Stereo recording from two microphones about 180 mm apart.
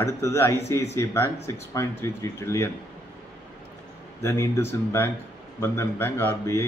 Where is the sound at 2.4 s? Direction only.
15° left (ahead or behind).